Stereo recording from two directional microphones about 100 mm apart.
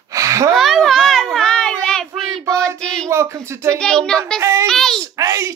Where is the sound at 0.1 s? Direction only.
35° right (ahead or behind).